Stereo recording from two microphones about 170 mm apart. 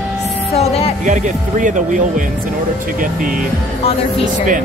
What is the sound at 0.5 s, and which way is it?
Speech, 40° left (ahead or behind).